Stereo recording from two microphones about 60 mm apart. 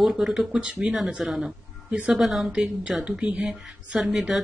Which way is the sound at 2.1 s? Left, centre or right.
Centre.